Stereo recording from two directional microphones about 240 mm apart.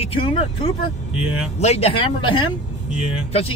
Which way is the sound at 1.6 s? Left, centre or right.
Left.